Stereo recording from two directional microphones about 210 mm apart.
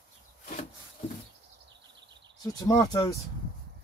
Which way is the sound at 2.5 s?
15° left (ahead or behind).